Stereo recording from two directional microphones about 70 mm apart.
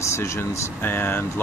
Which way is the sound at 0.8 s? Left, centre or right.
Left.